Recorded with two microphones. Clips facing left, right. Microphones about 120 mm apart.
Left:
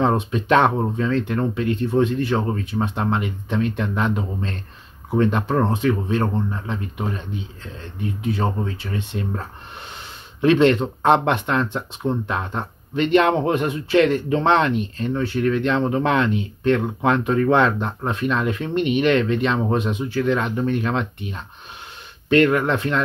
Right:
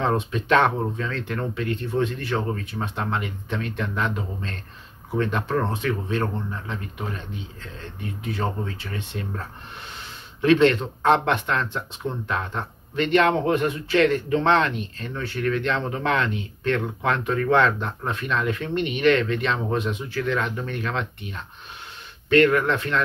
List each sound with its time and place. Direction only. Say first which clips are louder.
0.0 s speech: left 4 dB; 20° left (ahead or behind)
8.9 s speech: left 6 dB; 20° left (ahead or behind)
10.4 s speech: left 2 dB; 20° left (ahead or behind)